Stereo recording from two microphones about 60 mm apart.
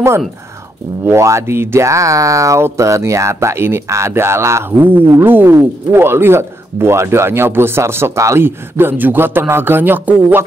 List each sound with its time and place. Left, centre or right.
1.2 s speech: right
4.6 s a man's voice: right